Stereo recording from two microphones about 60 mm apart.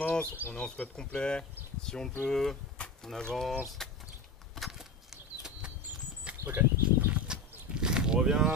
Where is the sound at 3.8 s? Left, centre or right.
Centre.